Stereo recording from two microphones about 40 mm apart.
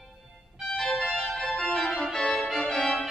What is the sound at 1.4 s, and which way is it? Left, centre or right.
Organ, centre.